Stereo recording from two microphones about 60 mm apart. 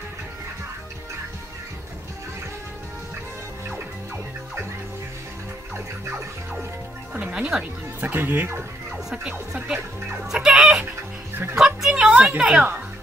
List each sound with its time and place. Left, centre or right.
7.2 s speech: right
8.0 s speech: right
8.9 s a woman's voice: centre